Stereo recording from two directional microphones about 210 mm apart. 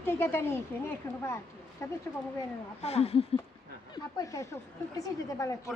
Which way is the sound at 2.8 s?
30° left (ahead or behind).